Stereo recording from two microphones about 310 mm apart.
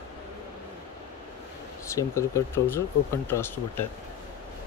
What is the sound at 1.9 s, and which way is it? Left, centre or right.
Speech, centre.